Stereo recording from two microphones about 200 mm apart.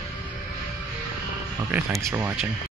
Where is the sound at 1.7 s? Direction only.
10° right (ahead or behind).